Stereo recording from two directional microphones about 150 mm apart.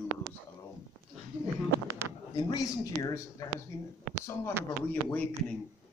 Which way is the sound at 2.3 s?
25° left (ahead or behind).